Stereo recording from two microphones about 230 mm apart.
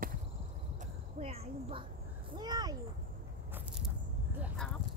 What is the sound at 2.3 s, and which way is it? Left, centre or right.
Speech, centre.